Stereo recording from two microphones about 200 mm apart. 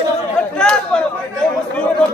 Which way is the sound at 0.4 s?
5° left (ahead or behind).